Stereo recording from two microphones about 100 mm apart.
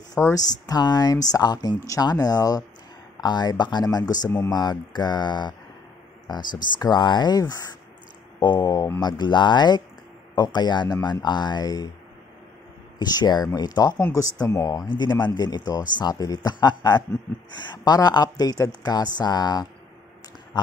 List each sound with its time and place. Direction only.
0.2 s speech: 35° left (ahead or behind)
13.0 s speech: 45° left (ahead or behind)
14.9 s speech: 45° left (ahead or behind)